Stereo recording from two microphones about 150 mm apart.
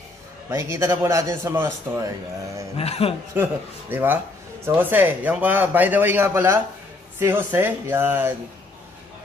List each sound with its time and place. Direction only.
0.5 s a man's voice: 20° right (ahead or behind)
2.8 s a man's voice: 40° left (ahead or behind)
3.9 s a man's voice: 15° right (ahead or behind)